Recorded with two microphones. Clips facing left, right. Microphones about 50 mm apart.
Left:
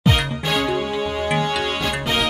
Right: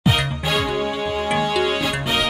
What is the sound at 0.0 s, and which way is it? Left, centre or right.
Music, centre.